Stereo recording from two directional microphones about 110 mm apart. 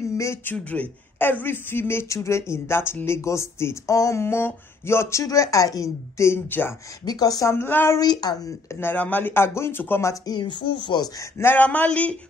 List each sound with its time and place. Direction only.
0.1 s speech: 25° left (ahead or behind)
0.7 s speech: 15° left (ahead or behind)
7.1 s speech: 35° left (ahead or behind)
8.0 s a woman's voice: 40° left (ahead or behind)
8.7 s speech: 15° left (ahead or behind)
10.2 s a woman's voice: 40° left (ahead or behind)
11.3 s speech: 20° left (ahead or behind)